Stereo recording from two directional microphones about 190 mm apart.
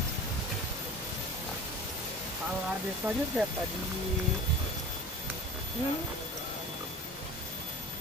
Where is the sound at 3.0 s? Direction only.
10° right (ahead or behind).